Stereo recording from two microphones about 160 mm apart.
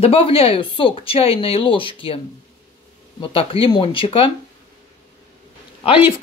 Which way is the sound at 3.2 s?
35° left (ahead or behind).